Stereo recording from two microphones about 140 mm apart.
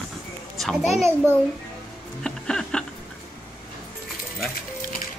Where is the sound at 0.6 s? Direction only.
Centre (ahead or behind).